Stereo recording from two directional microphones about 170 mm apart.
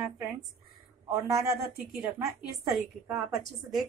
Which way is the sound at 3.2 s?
Centre (ahead or behind).